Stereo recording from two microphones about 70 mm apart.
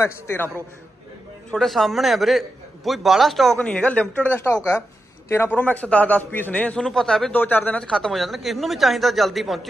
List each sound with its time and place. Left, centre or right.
0.0 s a man's voice: left
1.5 s a man's voice: centre
3.5 s a man's voice: centre
6.8 s a man's voice: centre
7.3 s a man's voice: left
8.1 s a man's voice: centre